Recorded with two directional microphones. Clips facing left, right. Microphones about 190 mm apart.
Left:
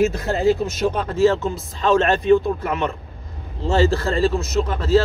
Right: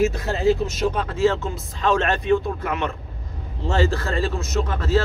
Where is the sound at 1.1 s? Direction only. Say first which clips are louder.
Left 6 dB; 35° left (ahead or behind).